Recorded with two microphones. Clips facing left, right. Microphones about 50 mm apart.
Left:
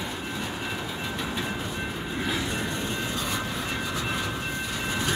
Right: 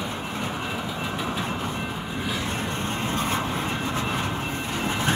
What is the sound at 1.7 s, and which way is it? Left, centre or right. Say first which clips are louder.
Train: right 2 dB; centre.